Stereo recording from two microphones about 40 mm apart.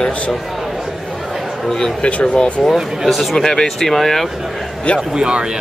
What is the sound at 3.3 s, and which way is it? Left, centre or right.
Speech, centre.